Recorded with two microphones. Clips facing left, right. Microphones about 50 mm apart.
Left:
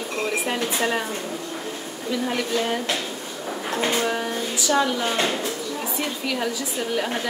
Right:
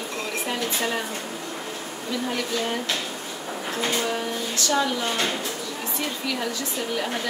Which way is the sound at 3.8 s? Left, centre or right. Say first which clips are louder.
Left 3 dB; left.